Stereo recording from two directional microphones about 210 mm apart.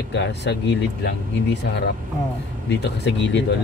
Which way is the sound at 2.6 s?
55° left (ahead or behind).